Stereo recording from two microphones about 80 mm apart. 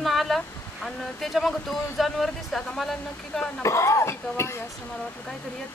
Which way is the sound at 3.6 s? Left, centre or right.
Left.